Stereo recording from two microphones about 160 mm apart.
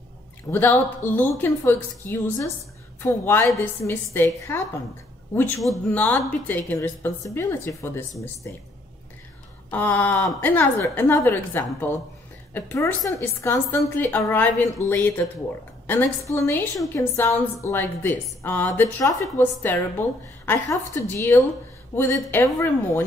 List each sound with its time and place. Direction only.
0.5 s a woman's voice: 15° left (ahead or behind)
5.9 s a woman's voice: 10° left (ahead or behind)
9.7 s a woman's voice: 10° left (ahead or behind)